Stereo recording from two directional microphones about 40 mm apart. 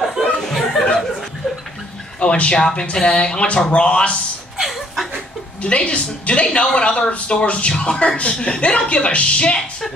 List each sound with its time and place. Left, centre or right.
0.5 s chuckle: centre
2.1 s a woman's voice: left
4.6 s chuckle: centre
5.6 s a woman's voice: left